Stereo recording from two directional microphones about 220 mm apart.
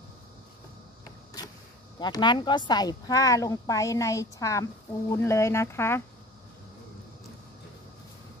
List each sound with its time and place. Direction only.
2.0 s speech: 20° left (ahead or behind)